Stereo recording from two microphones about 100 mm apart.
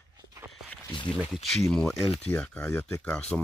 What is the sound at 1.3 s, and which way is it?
Speech, centre (ahead or behind).